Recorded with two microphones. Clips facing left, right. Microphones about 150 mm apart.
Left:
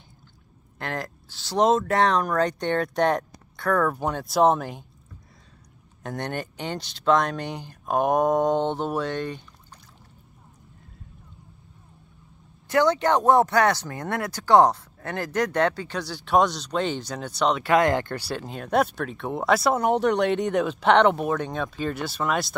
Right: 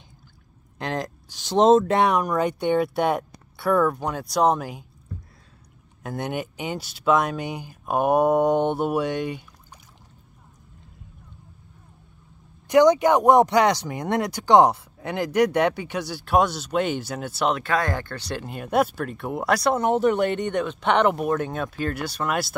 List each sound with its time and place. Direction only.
0.7 s speech: 20° right (ahead or behind); by 4.8 s centre (ahead or behind)
6.0 s speech: 5° right (ahead or behind)
12.6 s speech: 15° right (ahead or behind)
17.6 s speech: 20° left (ahead or behind)
18.2 s speech: centre (ahead or behind)